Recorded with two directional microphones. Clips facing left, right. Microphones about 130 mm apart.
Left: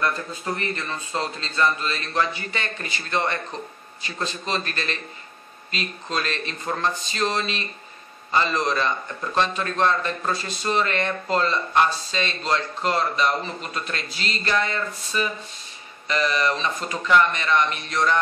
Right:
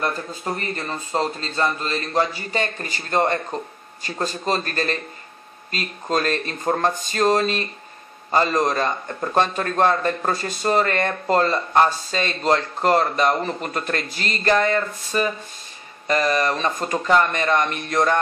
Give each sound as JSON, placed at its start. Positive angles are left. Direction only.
{"t": 0.7, "sound": "a man's voice", "side_deg": -40}